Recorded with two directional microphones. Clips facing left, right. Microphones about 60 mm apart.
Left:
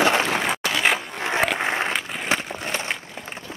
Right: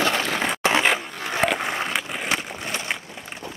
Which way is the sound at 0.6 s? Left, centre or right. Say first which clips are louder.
Right 5 dB; right.